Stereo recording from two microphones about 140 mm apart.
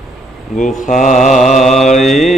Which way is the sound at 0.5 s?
60° left (ahead or behind).